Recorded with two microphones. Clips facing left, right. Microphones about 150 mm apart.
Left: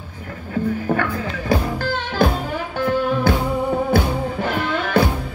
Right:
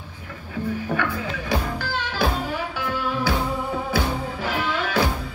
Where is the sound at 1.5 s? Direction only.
50° left (ahead or behind).